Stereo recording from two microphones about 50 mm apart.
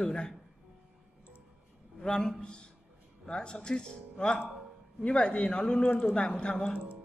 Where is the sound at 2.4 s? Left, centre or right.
Centre.